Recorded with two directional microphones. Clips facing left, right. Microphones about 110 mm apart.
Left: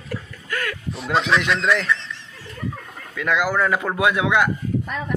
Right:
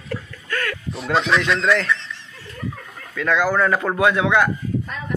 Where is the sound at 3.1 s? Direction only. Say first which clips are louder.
Right 2 dB; 10° left (ahead or behind).